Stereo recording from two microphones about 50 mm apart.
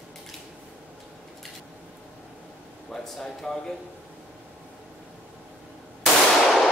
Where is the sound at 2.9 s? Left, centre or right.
Centre.